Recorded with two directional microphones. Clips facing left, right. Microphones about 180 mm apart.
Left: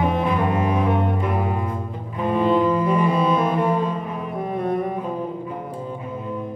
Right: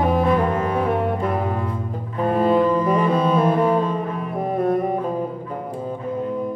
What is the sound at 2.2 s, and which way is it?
Cello, 40° right (ahead or behind).